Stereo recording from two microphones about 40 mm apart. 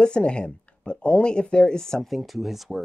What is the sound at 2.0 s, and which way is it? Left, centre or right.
Speech, centre.